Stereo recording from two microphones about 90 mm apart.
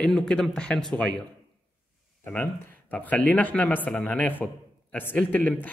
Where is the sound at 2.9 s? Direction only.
15° left (ahead or behind).